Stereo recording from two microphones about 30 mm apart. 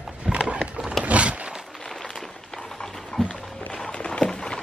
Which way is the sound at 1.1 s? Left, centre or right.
Right.